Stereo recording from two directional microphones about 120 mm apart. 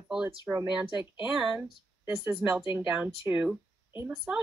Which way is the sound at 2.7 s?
15° right (ahead or behind).